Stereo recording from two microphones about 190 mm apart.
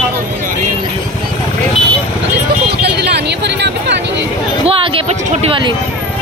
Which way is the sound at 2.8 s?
60° right (ahead or behind).